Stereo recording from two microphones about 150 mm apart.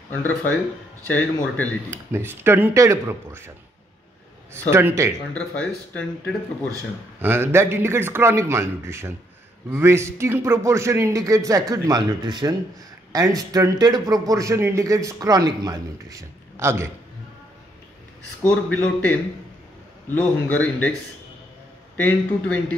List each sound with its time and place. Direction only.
0.2 s speech: 10° left (ahead or behind)
2.1 s a man's voice: 15° right (ahead or behind)
4.6 s a man's voice: 20° right (ahead or behind)
5.3 s speech: 10° left (ahead or behind)
7.2 s a man's voice: 15° right (ahead or behind)
18.4 s speech: 10° left (ahead or behind)
20.1 s speech: 10° left (ahead or behind)
21.9 s speech: 10° left (ahead or behind)